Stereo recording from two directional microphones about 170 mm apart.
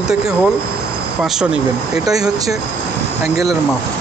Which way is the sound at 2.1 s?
20° right (ahead or behind).